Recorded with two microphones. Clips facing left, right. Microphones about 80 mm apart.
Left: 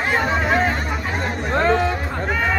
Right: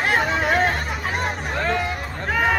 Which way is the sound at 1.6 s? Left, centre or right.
Left.